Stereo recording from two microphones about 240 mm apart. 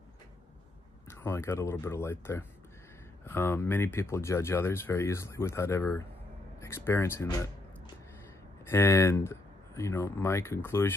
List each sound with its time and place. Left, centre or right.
1.0 s speech: centre
8.6 s speech: centre